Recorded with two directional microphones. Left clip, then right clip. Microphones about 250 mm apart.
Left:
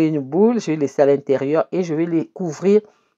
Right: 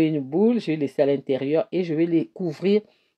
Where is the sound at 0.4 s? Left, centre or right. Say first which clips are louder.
Left 5 dB; centre.